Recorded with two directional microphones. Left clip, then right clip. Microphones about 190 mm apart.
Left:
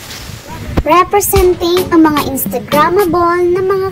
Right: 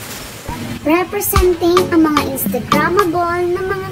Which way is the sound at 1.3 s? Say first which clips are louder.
Left 2 dB; centre (ahead or behind).